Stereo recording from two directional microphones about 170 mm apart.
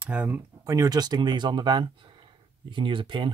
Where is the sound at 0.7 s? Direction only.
20° right (ahead or behind).